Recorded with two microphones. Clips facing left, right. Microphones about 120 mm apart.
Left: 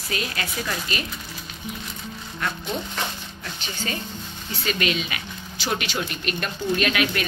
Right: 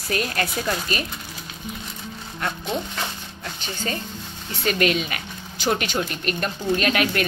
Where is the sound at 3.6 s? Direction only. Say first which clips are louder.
Right 2 dB; 45° right (ahead or behind).